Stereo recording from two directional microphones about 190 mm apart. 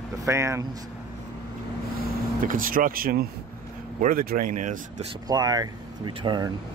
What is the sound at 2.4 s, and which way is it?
Speech, 45° right (ahead or behind).